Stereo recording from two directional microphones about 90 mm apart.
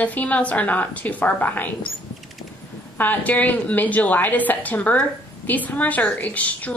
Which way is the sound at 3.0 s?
20° left (ahead or behind).